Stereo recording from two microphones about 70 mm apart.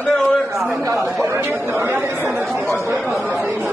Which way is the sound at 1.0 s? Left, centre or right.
Right.